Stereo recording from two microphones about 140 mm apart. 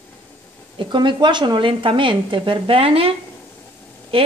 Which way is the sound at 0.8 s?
35° right (ahead or behind).